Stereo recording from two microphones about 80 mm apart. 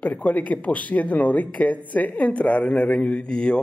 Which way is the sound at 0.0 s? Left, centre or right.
Centre.